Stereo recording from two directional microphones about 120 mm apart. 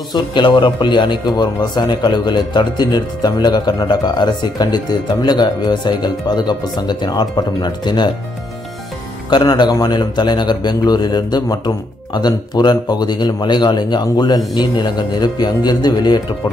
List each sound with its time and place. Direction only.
0.1 s a man's voice: 40° left (ahead or behind)
9.3 s a man's voice: 35° left (ahead or behind)